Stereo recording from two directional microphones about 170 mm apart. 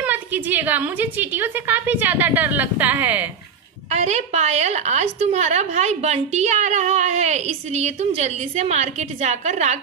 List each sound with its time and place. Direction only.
0.0 s a woman's voice: 10° right (ahead or behind)
3.9 s a woman's voice: 40° right (ahead or behind)